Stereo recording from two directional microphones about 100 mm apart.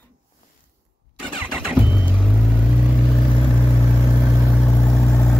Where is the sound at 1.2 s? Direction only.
10° right (ahead or behind).